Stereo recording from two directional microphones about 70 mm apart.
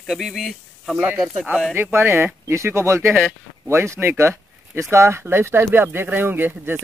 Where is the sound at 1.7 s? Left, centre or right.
Right.